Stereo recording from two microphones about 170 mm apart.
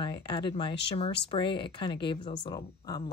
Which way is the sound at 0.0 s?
30° left (ahead or behind).